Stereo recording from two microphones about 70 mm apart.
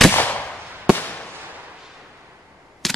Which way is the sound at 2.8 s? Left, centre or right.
Centre.